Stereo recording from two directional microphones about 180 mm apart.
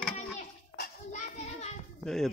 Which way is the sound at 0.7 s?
45° left (ahead or behind).